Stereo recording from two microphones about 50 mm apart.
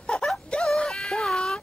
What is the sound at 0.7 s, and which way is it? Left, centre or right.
Music, centre.